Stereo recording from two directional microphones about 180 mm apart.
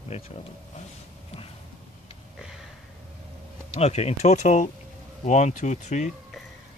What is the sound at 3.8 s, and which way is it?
Speech, 35° left (ahead or behind).